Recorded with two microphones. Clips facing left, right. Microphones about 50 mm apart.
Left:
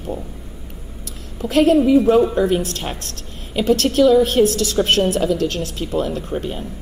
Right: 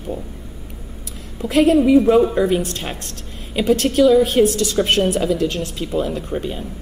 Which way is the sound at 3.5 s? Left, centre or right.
Centre.